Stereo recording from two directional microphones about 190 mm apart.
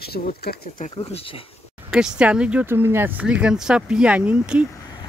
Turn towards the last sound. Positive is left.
turn(degrees=-5)  # may be behind; listen again after turning